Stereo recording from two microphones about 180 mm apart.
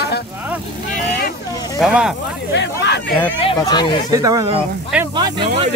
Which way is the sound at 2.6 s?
70° left (ahead or behind).